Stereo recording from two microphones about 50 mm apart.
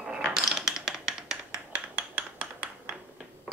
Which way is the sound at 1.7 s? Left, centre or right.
Right.